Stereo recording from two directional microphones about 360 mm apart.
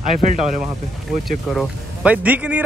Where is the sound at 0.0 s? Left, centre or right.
Right.